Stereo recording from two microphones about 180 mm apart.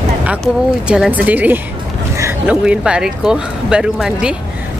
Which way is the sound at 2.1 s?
15° right (ahead or behind).